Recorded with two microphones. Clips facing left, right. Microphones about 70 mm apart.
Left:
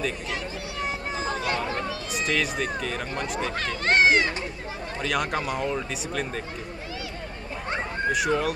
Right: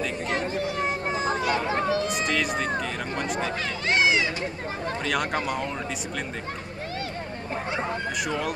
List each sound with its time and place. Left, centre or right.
0.3 s vehicle: right
1.5 s a sound: right
1.9 s a sound: right
2.2 s speech: centre
3.5 s speech: left
5.0 s speech: centre
8.1 s speech: centre